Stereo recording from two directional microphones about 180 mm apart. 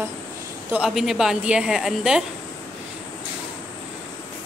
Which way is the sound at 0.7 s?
5° right (ahead or behind).